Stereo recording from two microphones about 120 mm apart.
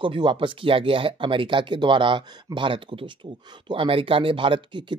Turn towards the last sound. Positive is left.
turn(degrees=-40)  # may be behind; listen again after turning